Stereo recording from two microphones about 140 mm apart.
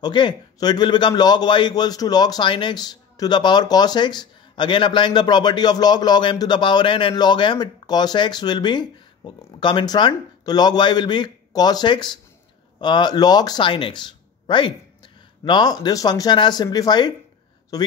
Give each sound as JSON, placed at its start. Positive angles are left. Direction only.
{"t": 0.0, "sound": "a man's voice", "side_deg": 35}